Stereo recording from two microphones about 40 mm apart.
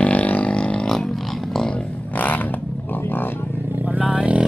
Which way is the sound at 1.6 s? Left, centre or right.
Left.